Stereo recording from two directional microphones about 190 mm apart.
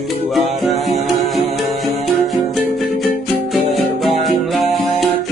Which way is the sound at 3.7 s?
Centre (ahead or behind).